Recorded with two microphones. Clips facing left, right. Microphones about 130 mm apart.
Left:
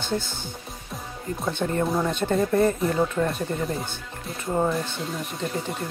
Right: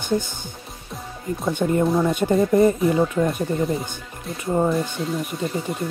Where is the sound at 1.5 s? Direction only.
15° right (ahead or behind).